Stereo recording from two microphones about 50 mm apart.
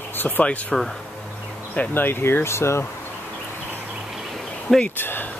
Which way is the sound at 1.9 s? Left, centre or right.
Left.